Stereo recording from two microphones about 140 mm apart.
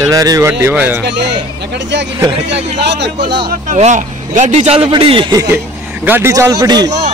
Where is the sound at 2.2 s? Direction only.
40° right (ahead or behind).